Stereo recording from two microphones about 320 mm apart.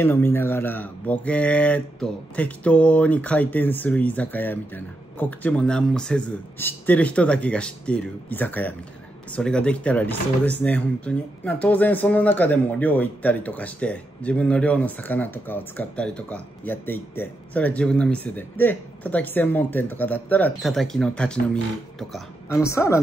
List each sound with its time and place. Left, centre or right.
0.0 s a woman's voice: centre